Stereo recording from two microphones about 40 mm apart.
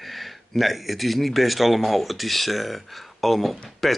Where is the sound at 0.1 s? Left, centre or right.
Centre.